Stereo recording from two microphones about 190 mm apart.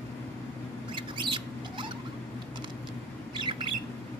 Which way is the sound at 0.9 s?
25° right (ahead or behind).